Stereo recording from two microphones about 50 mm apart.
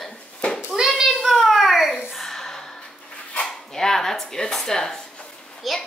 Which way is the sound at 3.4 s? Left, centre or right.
Centre.